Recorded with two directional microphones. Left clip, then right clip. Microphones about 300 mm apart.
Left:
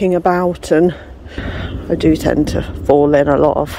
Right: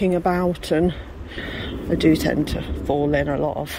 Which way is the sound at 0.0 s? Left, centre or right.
Centre.